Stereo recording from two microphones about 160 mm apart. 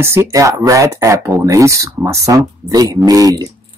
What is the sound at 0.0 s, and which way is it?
Speech, 15° right (ahead or behind).